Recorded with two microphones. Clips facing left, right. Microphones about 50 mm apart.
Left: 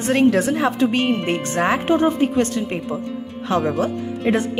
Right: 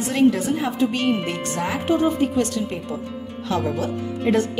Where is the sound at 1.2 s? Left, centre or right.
Left.